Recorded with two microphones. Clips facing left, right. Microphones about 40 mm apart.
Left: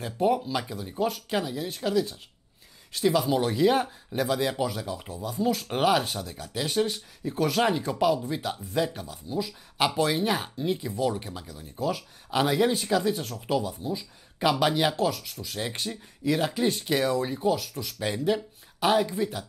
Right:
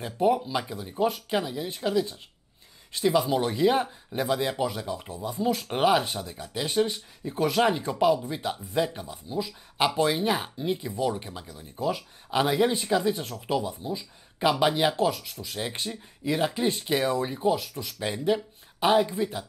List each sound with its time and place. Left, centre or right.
0.0 s speech: centre
15.0 s speech: centre